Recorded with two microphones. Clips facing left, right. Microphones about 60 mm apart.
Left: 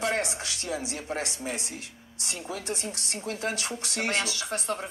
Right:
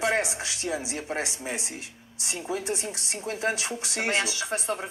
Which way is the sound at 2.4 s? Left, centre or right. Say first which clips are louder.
Right 4 dB; centre.